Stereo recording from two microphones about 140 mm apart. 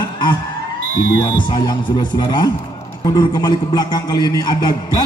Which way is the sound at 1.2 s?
30° left (ahead or behind).